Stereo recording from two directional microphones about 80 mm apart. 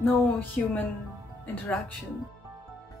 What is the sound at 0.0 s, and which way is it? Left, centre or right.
Speech, left.